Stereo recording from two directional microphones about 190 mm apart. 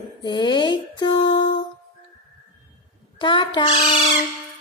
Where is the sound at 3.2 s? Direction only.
25° left (ahead or behind).